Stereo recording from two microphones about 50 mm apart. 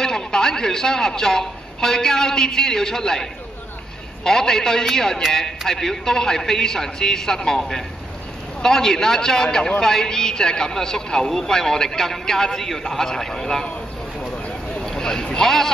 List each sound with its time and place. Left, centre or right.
0.0 s a woman's voice: centre
14.8 s speech: centre